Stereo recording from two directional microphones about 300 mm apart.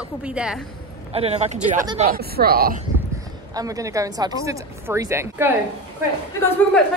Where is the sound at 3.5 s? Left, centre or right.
Centre.